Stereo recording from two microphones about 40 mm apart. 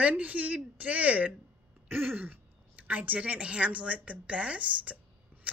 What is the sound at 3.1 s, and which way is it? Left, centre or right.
A woman's voice, right.